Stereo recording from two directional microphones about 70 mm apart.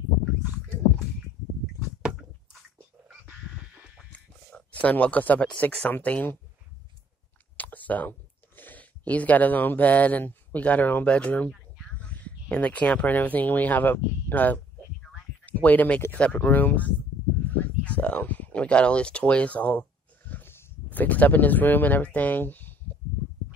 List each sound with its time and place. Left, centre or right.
4.5 s speech: centre
7.5 s speech: left
17.5 s a sound: centre